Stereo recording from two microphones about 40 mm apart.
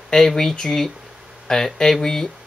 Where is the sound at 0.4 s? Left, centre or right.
Centre.